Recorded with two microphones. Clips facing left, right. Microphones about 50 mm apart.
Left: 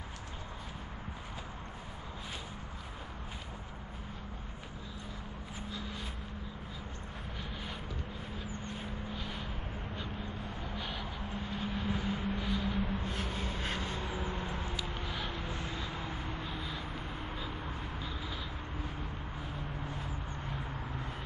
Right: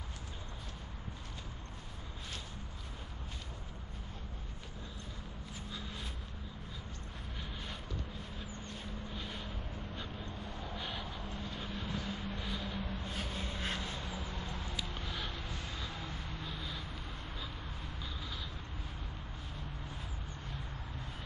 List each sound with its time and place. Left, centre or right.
5.7 s vehicle: centre
8.6 s vehicle: centre
9.1 s vehicle: centre
9.9 s vehicle: centre
10.8 s vehicle: centre
11.2 s vehicle: centre
12.4 s a sound: centre
12.7 s a sound: centre
15.4 s vehicle: left; by 18.4 s centre
20.4 s vehicle: centre